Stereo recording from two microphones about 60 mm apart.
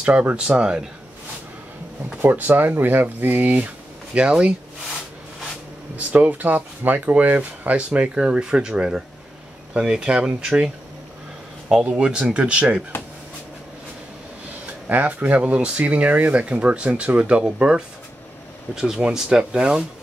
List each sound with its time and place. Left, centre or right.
0.0 s speech: right
2.2 s speech: right
5.9 s speech: right; by 10.7 s centre
11.8 s speech: centre
14.9 s speech: right